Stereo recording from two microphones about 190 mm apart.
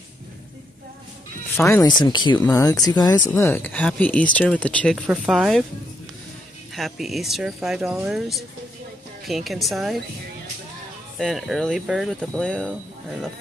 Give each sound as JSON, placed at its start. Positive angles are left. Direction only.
{"t": 1.6, "sound": "speech", "side_deg": 15}
{"t": 4.9, "sound": "speech", "side_deg": -5}
{"t": 6.7, "sound": "speech", "side_deg": 0}
{"t": 11.1, "sound": "speech", "side_deg": 0}